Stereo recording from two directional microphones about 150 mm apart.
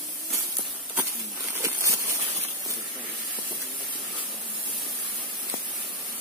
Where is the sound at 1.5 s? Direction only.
20° right (ahead or behind).